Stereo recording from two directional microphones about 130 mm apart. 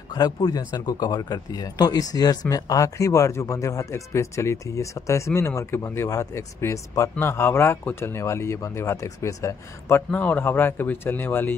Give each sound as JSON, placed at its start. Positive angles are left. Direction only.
{"t": 0.1, "sound": "speech", "side_deg": 30}